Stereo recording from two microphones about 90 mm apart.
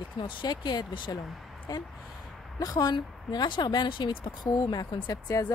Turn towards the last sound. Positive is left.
turn(degrees=45)  # may be behind; listen again after turning